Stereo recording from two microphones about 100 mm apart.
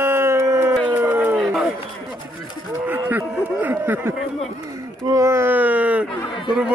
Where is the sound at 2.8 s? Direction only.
20° right (ahead or behind).